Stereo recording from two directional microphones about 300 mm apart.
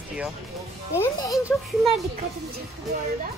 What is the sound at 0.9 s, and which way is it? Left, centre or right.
Speech, centre.